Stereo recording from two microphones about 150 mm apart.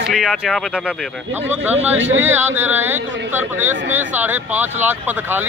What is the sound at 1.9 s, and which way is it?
Speech, 10° right (ahead or behind).